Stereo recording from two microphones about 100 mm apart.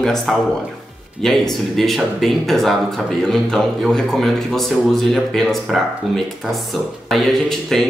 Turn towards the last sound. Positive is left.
turn(degrees=5)  # may be behind; listen again after turning